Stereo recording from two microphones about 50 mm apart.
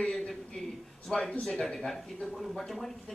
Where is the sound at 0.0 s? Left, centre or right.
Centre.